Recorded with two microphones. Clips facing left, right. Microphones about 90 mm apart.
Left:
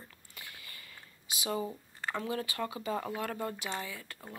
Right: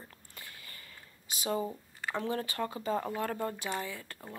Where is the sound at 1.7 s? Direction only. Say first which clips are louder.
Even; 10° right (ahead or behind).